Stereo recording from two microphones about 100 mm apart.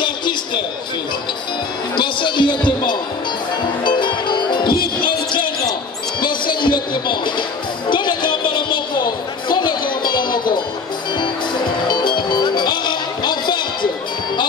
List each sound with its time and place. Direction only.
0.0 s music: 50° left (ahead or behind)
2.0 s music: 55° left (ahead or behind)